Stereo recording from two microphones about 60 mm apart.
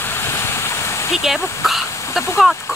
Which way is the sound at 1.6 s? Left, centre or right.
Centre.